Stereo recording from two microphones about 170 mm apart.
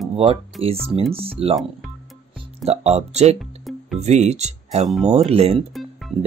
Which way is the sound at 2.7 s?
40° right (ahead or behind).